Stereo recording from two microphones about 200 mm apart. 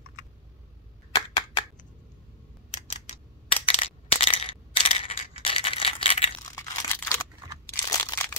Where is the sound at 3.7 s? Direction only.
30° left (ahead or behind).